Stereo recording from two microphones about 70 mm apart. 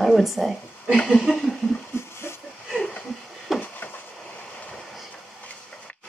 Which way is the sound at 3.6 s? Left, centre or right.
Left.